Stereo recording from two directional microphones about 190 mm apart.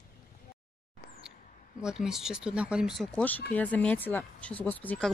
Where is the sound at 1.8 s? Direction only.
5° right (ahead or behind).